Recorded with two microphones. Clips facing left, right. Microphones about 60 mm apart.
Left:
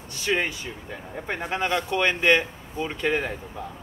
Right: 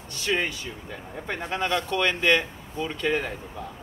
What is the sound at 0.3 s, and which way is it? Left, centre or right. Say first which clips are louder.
Speech: left 1 dB; centre.